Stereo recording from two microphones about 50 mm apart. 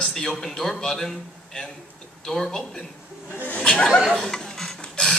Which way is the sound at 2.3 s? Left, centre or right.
Centre.